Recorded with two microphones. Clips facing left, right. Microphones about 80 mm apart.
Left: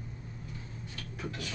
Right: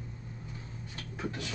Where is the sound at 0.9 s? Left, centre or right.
Right.